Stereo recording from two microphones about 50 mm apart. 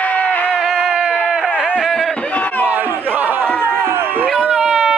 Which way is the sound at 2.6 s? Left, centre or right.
Right.